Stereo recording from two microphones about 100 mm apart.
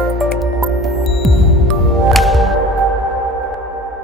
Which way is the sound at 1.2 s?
Centre (ahead or behind).